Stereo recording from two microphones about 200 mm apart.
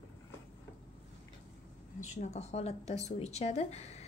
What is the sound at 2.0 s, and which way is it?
Speech, 35° left (ahead or behind).